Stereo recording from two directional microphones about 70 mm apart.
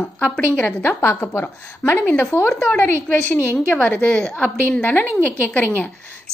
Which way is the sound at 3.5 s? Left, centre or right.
Centre.